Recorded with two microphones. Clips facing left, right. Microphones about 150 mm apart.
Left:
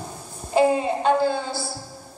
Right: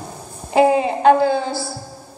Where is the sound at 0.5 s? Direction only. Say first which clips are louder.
Right 4 dB; 75° right (ahead or behind).